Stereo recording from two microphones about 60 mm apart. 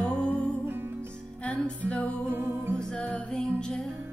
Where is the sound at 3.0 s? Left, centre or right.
Left.